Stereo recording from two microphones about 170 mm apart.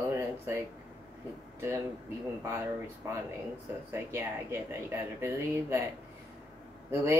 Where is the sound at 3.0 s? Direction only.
20° right (ahead or behind).